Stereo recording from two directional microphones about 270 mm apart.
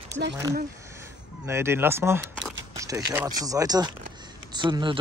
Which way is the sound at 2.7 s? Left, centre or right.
Centre.